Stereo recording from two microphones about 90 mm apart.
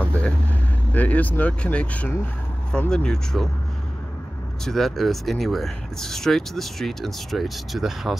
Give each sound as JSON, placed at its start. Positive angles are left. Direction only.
{"t": 0.0, "sound": "vehicle", "side_deg": 15}
{"t": 0.9, "sound": "speech", "side_deg": 15}
{"t": 4.6, "sound": "speech", "side_deg": 5}